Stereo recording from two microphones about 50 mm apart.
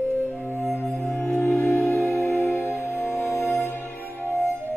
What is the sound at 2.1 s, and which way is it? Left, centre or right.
Music, left.